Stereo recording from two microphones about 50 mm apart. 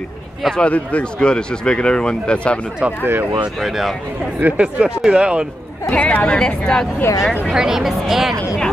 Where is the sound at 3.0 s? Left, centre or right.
Right.